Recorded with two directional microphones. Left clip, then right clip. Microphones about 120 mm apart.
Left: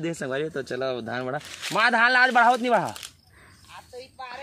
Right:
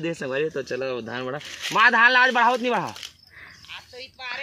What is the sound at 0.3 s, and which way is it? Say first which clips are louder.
Speech: right 5 dB; 40° left (ahead or behind).